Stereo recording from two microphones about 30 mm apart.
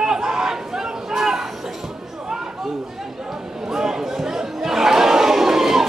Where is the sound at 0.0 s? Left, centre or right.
Centre.